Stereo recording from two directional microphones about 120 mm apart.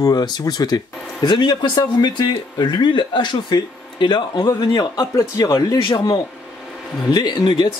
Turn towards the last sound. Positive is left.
turn(degrees=45)  # may be behind; listen again after turning